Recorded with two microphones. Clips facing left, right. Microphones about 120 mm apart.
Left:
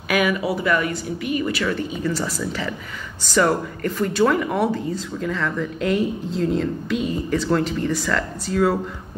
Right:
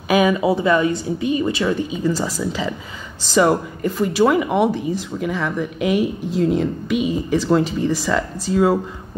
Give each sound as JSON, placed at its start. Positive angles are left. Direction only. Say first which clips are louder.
{"t": 0.1, "sound": "a woman's voice", "louder": "right 5 dB", "side_deg": -25}